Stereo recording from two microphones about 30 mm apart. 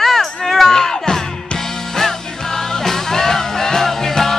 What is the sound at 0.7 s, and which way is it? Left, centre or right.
Music, centre.